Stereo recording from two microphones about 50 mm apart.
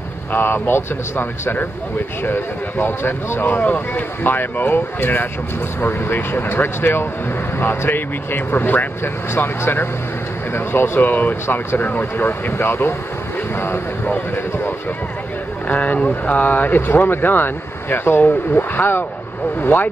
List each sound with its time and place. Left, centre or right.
0.3 s speech: left
5.8 s speech: left
15.6 s speech: left